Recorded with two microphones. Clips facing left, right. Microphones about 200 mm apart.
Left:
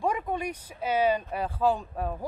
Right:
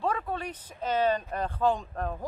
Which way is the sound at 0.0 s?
15° left (ahead or behind).